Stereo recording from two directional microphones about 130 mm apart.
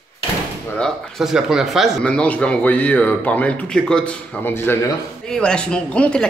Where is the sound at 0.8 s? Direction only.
Centre (ahead or behind); by 4.8 s 15° left (ahead or behind).